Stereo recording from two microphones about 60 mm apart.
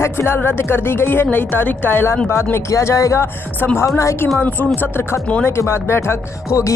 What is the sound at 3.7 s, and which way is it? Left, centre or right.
Speech, left.